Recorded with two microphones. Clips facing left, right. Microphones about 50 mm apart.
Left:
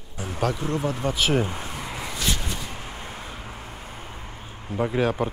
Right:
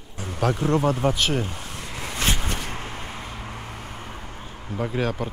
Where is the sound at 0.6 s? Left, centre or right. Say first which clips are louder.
Right 5 dB; right.